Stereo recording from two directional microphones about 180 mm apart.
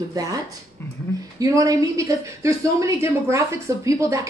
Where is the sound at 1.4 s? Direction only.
20° right (ahead or behind).